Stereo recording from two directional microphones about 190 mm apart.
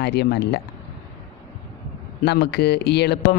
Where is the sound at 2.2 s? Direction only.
60° left (ahead or behind).